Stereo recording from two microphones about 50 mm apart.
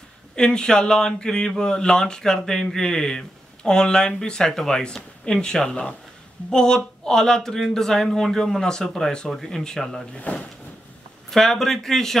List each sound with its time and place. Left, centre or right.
0.4 s speech: centre
10.3 s speech: left
11.2 s speech: centre